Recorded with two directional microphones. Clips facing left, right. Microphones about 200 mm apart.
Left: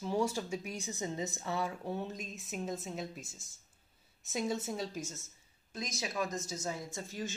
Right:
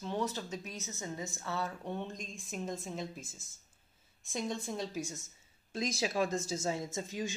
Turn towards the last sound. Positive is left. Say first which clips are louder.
# right 3 dB
turn(degrees=-15)  # may be behind; listen again after turning